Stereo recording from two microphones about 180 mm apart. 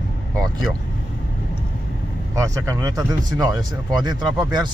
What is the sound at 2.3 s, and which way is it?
Speech, 20° right (ahead or behind).